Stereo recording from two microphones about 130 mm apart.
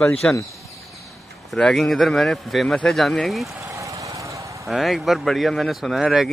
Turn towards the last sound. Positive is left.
turn(degrees=0)  # may be behind; listen again after turning